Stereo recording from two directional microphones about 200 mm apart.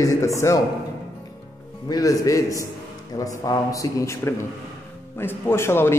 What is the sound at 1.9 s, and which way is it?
Speech, 15° left (ahead or behind).